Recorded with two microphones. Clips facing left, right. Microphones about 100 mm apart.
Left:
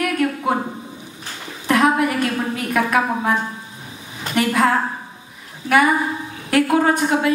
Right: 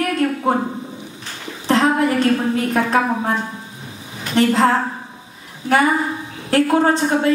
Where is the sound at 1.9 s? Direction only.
30° right (ahead or behind).